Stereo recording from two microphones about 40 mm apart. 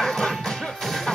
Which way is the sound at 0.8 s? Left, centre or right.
Centre.